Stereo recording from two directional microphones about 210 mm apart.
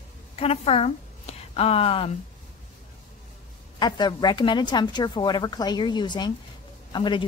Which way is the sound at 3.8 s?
20° left (ahead or behind).